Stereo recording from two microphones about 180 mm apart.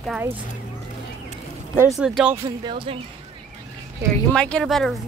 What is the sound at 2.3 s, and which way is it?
Speech, 20° right (ahead or behind).